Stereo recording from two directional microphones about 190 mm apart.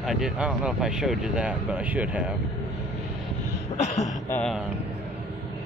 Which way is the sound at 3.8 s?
35° left (ahead or behind).